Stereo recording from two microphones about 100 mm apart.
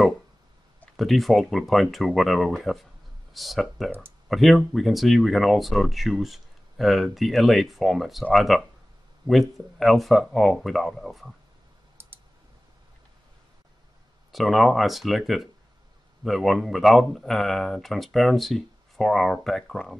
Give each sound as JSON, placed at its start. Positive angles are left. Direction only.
{"t": 0.9, "sound": "speech", "side_deg": 0}
{"t": 12.0, "sound": "clicking", "side_deg": -25}
{"t": 14.3, "sound": "speech", "side_deg": 0}